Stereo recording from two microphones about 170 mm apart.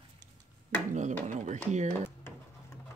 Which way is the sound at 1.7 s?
45° right (ahead or behind).